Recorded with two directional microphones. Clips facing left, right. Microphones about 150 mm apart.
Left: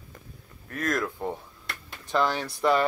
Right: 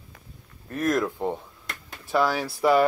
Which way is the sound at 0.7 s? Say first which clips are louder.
Right 4 dB; 20° right (ahead or behind).